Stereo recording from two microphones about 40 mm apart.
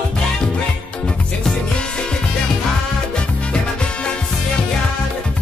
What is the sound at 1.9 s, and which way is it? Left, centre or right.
Music, left.